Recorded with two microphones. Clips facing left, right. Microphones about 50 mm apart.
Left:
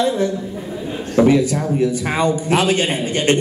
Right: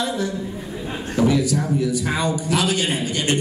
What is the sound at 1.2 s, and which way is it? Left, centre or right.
A man's voice, left.